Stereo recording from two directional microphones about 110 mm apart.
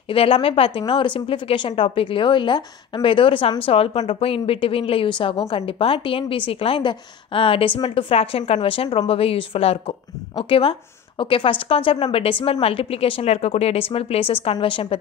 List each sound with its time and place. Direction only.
0.1 s a woman's voice: 55° left (ahead or behind); by 4.1 s 75° left (ahead or behind)
4.1 s a woman's voice: 60° left (ahead or behind)
10.3 s a woman's voice: 50° left (ahead or behind)
13.2 s a woman's voice: 75° left (ahead or behind); by 15.0 s 55° left (ahead or behind)